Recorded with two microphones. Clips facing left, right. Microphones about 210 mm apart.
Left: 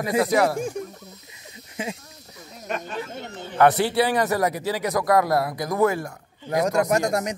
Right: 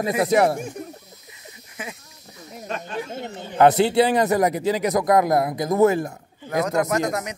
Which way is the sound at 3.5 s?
20° right (ahead or behind).